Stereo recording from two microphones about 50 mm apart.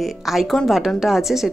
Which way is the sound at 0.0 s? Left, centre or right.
Centre.